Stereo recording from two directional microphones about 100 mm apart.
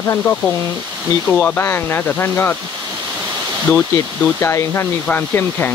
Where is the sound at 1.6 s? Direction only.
25° left (ahead or behind).